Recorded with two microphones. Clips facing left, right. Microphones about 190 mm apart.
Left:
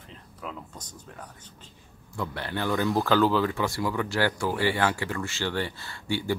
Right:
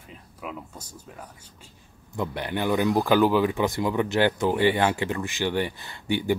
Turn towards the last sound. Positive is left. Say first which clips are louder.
# right 3 dB
turn(degrees=-20)  # may be behind; listen again after turning